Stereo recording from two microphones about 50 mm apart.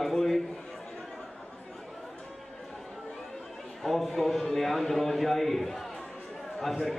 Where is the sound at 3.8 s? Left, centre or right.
Centre.